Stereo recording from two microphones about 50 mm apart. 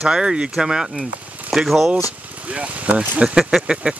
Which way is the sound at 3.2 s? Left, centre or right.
Centre.